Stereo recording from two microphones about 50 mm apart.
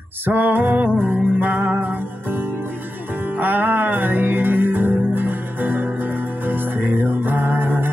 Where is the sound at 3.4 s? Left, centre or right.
Right.